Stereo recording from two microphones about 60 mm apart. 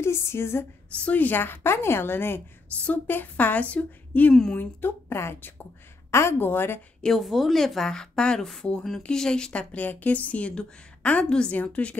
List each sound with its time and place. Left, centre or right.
0.0 s speech: left
0.9 s a woman's voice: left
4.3 s speech: centre
4.6 s a woman's voice: left
7.0 s a woman's voice: centre; by 12.0 s left